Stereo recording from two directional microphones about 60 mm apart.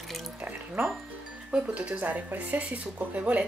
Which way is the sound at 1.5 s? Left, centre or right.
Right.